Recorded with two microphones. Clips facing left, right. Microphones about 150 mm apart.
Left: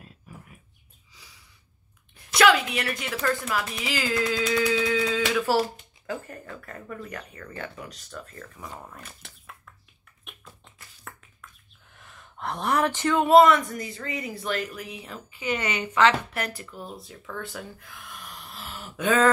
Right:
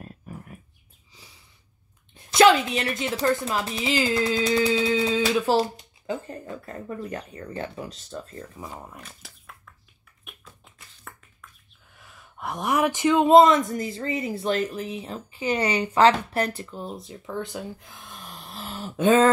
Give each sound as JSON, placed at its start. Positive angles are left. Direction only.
{"t": 0.0, "sound": "dog", "side_deg": -50}
{"t": 2.1, "sound": "a woman's voice", "side_deg": -25}
{"t": 9.0, "sound": "shuffling cards", "side_deg": 0}
{"t": 10.2, "sound": "tap", "side_deg": 0}
{"t": 11.9, "sound": "a woman's voice", "side_deg": -5}